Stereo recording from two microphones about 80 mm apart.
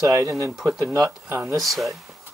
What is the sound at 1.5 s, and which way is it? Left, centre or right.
Speech, centre.